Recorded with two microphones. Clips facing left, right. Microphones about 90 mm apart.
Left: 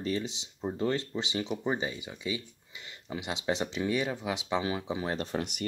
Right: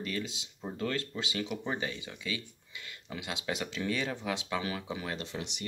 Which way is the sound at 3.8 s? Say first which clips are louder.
Left 3 dB; 15° left (ahead or behind).